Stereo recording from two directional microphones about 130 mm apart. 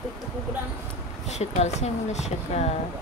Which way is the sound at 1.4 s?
60° left (ahead or behind).